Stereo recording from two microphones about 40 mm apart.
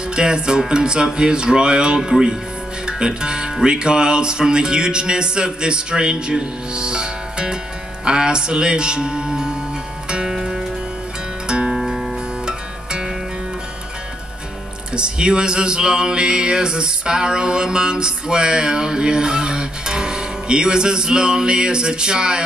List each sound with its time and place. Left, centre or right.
0.1 s mantra: right
8.0 s music: centre
10.3 s music: centre
11.4 s music: right
11.7 s music: centre
14.9 s mantra: right